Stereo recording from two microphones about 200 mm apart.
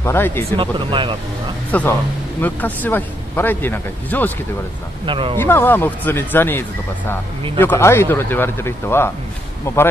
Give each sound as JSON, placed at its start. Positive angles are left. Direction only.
{"t": 0.0, "sound": "speech", "side_deg": 10}
{"t": 0.6, "sound": "speech", "side_deg": -25}
{"t": 1.7, "sound": "speech", "side_deg": 10}
{"t": 5.0, "sound": "speech", "side_deg": -25}
{"t": 5.4, "sound": "speech", "side_deg": 10}